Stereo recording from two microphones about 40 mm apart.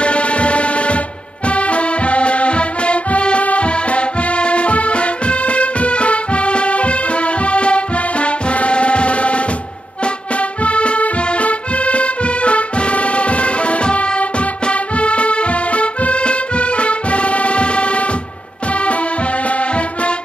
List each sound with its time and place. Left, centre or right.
0.0 s music: left
10.6 s music: left